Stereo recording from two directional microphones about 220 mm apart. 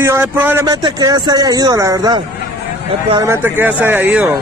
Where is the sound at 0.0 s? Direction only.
10° right (ahead or behind).